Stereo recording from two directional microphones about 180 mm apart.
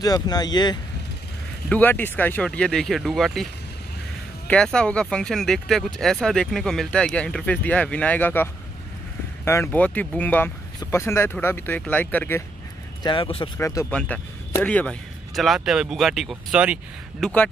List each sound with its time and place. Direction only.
0.0 s speech: 20° left (ahead or behind)
1.7 s speech: 10° left (ahead or behind)
4.5 s speech: 5° left (ahead or behind)
13.0 s speech: 30° left (ahead or behind)
13.6 s speech: 15° left (ahead or behind); by 17.3 s 5° right (ahead or behind)